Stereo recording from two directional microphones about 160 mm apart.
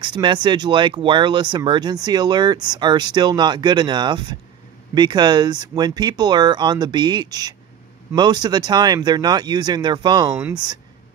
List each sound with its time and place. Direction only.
0.0 s speech: 30° right (ahead or behind)